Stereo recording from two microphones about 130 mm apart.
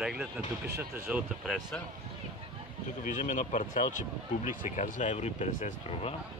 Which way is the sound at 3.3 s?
80° left.